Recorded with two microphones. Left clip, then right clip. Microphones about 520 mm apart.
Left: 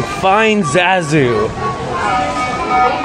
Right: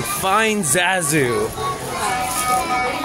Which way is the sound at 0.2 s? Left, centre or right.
Right.